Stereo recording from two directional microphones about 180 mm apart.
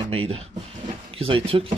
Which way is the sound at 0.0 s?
30° right (ahead or behind).